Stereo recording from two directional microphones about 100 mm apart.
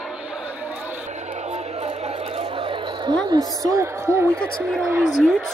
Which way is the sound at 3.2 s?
40° right (ahead or behind).